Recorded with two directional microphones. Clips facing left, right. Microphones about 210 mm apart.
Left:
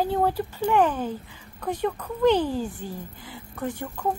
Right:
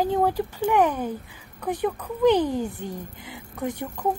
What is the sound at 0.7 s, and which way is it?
A woman's voice, 10° right (ahead or behind).